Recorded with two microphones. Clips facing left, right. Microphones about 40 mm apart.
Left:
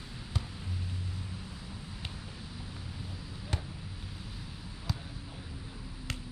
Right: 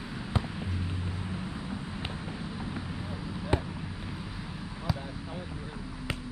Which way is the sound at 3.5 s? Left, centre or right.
Right.